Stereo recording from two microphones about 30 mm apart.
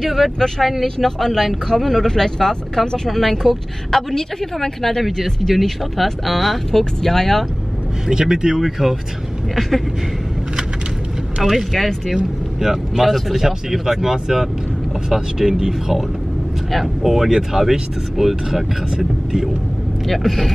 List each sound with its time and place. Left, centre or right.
0.0 s speech: centre
2.0 s speech: centre
3.1 s speech: centre
4.1 s speech: centre
6.7 s speech: centre
8.1 s speech: right; by 8.9 s centre
9.6 s speech: centre
11.4 s speech: centre
13.0 s speech: centre
13.4 s speech: centre
20.1 s speech: centre